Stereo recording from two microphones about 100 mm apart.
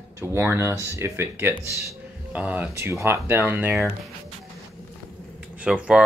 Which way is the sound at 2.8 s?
25° right (ahead or behind).